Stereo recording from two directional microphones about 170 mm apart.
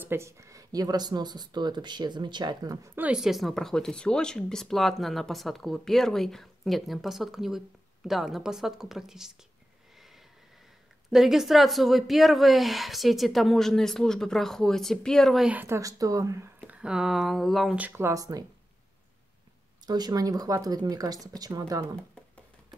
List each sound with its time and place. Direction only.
0.0 s speech: 15° right (ahead or behind)
3.0 s speech: 5° right (ahead or behind)
11.1 s speech: centre (ahead or behind); by 16.4 s 20° right (ahead or behind)
16.6 s speech: 5° right (ahead or behind)
19.9 s speech: 25° right (ahead or behind)